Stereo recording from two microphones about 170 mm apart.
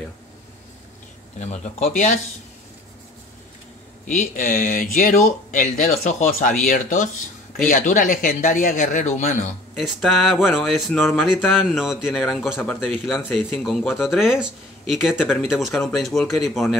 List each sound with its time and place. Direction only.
1.4 s speech: 45° left (ahead or behind)
4.1 s speech: 45° left (ahead or behind)
9.8 s speech: centre (ahead or behind)